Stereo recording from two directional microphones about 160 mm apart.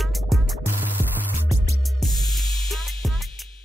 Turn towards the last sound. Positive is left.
turn(degrees=0)  # may be behind; listen again after turning